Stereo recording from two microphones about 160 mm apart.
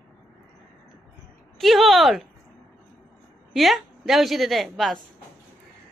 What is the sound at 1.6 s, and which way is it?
Speech, centre (ahead or behind).